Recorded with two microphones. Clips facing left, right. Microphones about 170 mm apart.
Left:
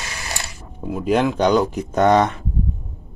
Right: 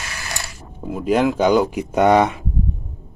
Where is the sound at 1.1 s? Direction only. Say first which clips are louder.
Right 1 dB; 5° right (ahead or behind).